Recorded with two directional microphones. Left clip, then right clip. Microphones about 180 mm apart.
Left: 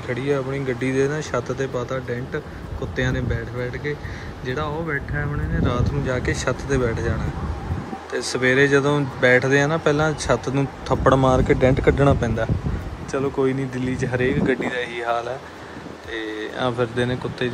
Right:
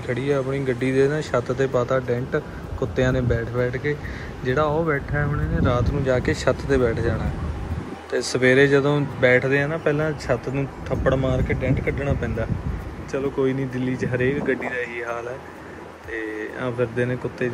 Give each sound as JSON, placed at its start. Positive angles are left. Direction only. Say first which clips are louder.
{"t": 0.1, "sound": "speech", "louder": "even", "side_deg": 5}
{"t": 13.1, "sound": "speech", "louder": "left 1 dB", "side_deg": 5}